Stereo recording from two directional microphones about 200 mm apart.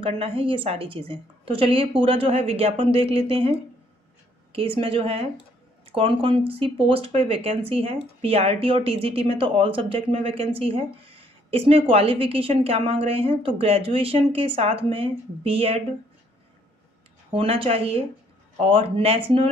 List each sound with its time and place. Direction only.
0.0 s a woman's voice: 25° right (ahead or behind)
17.3 s a woman's voice: 30° right (ahead or behind)